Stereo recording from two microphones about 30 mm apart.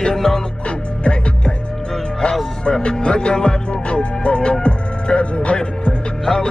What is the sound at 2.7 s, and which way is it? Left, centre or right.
Music, left.